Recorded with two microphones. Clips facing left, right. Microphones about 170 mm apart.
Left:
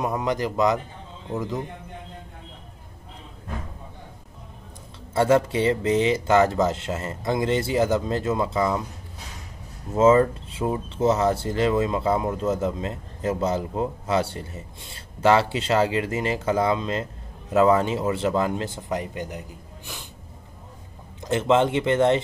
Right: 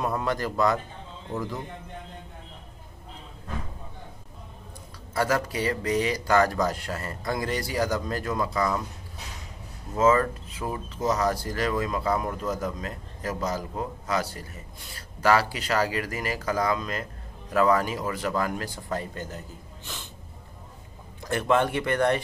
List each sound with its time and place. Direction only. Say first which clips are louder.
0.0 s a man's voice: left 3 dB; 15° left (ahead or behind)
5.1 s speech: left 7 dB; 25° left (ahead or behind)
9.9 s speech: left 5 dB; 25° left (ahead or behind)
21.2 s speech: left 4 dB; 20° left (ahead or behind)